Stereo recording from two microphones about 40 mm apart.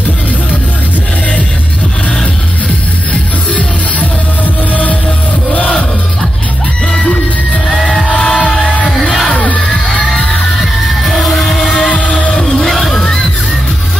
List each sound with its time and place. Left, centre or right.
5.5 s music: left
8.0 s music: left
10.6 s music: centre
11.9 s music: left
12.4 s music: centre